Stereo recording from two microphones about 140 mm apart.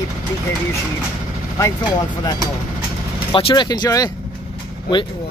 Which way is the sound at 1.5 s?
25° left (ahead or behind).